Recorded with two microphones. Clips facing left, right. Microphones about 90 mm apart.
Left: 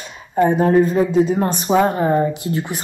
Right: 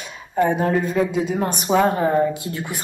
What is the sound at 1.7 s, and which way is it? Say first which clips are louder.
Speech: left 1 dB; 20° left (ahead or behind).